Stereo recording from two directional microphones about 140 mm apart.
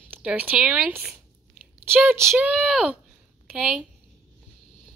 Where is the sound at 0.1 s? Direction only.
10° right (ahead or behind).